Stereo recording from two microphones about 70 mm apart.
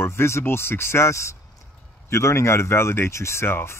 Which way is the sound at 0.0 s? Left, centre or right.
Left.